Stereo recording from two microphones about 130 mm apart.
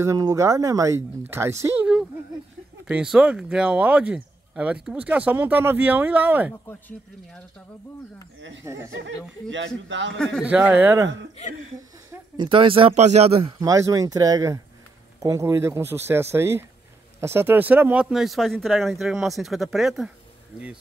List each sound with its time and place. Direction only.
0.0 s speech: 25° right (ahead or behind)
1.8 s a woman's voice: 5° right (ahead or behind)
6.5 s speech: 20° left (ahead or behind)
8.6 s speech: 20° right (ahead or behind)
9.2 s speech: 5° left (ahead or behind)
10.4 s speech: 10° right (ahead or behind)
12.4 s speech: 40° right (ahead or behind)
13.0 s speech: 55° right (ahead or behind)
13.6 s speech: 25° right (ahead or behind)
18.1 s speech: centre (ahead or behind)